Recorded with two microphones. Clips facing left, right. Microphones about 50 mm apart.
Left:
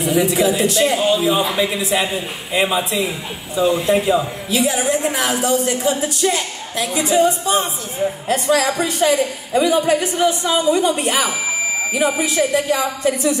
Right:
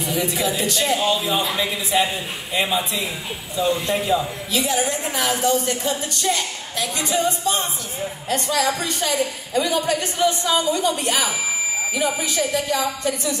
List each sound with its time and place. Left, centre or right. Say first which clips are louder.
0.0 s a woman's voice: left 7 dB; centre
8.3 s speech: left 4 dB; left
8.6 s a woman's voice: left 6 dB; centre